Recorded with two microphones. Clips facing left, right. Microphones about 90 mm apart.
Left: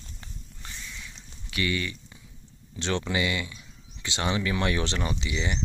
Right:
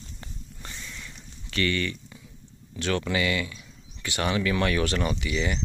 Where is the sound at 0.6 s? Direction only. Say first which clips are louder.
Right 1 dB; centre (ahead or behind).